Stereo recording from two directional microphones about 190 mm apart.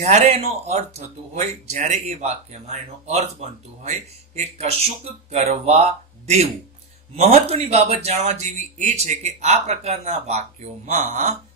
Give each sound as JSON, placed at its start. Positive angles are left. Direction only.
{"t": 0.0, "sound": "speech", "side_deg": -35}